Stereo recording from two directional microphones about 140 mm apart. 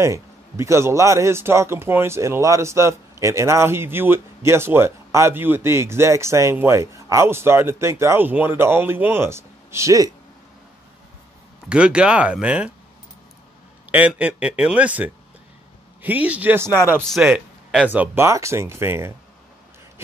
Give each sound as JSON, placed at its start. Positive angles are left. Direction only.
{"t": 0.0, "sound": "speech", "side_deg": -20}
{"t": 11.7, "sound": "speech", "side_deg": -5}
{"t": 13.9, "sound": "speech", "side_deg": -10}
{"t": 17.0, "sound": "speech", "side_deg": 0}